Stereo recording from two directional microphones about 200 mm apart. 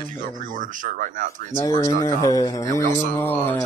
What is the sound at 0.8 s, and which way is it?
Speech, 40° right (ahead or behind).